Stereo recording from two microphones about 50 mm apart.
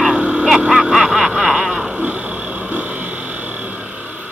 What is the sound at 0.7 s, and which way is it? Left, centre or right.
Dog, centre.